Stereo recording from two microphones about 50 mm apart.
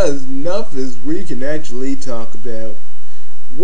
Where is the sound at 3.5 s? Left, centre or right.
Left.